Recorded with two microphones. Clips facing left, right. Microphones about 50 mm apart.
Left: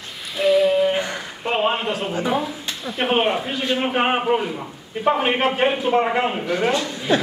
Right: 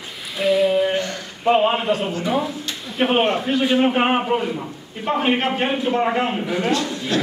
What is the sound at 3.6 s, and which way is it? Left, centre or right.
Speech, centre.